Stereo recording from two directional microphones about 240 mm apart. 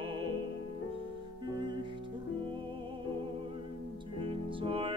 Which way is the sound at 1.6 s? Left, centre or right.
Centre.